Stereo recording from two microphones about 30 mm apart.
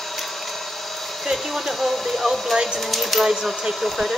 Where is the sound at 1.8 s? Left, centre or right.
Centre.